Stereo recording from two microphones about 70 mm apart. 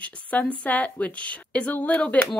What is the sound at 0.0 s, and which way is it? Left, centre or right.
Speech, left.